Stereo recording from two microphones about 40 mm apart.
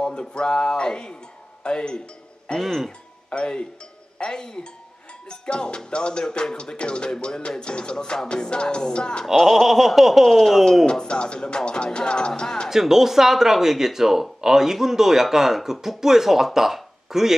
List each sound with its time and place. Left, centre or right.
0.0 s music: left
1.6 s speech: left
2.6 s a sound: centre
3.3 s speech: left
4.2 s music: centre
9.2 s speech: centre
9.5 s a sound: centre
10.9 s music: left
12.6 s speech: centre